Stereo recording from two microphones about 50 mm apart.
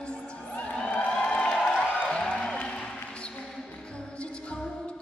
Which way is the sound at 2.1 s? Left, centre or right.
Centre.